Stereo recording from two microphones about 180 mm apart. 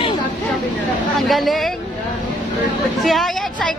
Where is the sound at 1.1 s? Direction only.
Centre (ahead or behind).